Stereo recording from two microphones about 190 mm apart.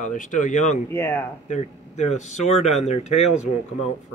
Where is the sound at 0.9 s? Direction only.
10° left (ahead or behind).